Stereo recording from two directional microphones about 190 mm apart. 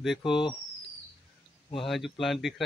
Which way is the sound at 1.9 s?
Centre (ahead or behind).